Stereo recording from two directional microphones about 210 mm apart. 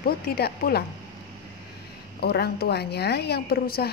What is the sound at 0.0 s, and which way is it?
Speech, 45° left (ahead or behind).